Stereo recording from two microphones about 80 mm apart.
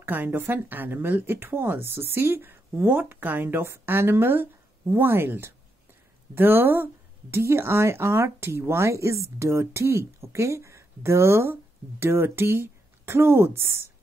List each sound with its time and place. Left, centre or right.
0.0 s speech: right